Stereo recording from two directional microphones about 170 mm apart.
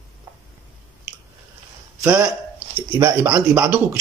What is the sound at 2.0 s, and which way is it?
Speech, 10° right (ahead or behind).